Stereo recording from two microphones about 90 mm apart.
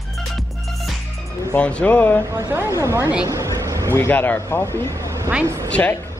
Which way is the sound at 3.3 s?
35° right (ahead or behind).